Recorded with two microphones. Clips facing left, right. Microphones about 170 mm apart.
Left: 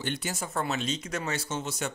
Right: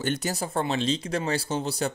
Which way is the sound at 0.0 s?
40° right (ahead or behind).